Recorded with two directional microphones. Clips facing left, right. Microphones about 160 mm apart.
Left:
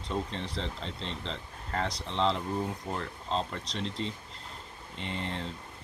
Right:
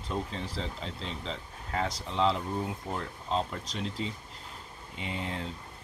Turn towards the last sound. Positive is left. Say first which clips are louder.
# even
turn(degrees=-5)  # may be behind; listen again after turning